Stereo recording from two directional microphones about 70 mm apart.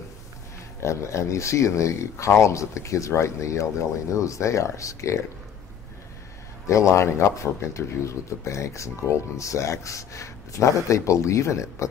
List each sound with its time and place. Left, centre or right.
0.8 s speech: left
6.7 s speech: left